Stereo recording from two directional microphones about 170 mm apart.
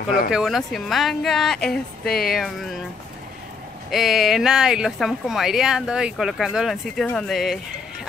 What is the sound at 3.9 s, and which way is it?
Speech, centre (ahead or behind).